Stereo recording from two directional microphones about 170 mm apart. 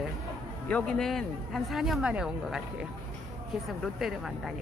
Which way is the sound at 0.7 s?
5° left (ahead or behind).